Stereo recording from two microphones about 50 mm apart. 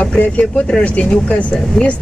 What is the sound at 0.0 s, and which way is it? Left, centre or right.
Speech, left.